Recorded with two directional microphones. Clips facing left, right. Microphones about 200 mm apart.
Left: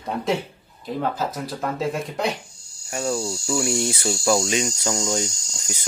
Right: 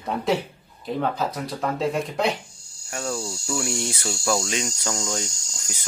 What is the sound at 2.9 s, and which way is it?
Cricket, 10° left (ahead or behind).